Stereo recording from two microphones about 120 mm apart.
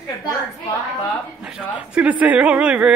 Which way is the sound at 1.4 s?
5° right (ahead or behind).